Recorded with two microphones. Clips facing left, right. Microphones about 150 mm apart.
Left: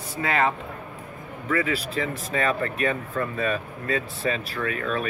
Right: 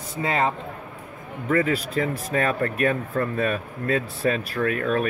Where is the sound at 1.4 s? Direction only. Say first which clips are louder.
Right 3 dB; 45° right (ahead or behind).